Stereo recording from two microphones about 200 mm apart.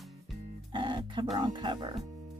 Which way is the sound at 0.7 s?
25° right (ahead or behind).